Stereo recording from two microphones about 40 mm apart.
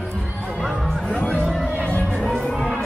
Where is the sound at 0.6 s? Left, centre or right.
Centre.